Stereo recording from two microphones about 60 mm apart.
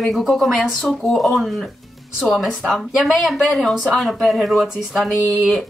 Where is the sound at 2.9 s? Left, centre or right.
Centre.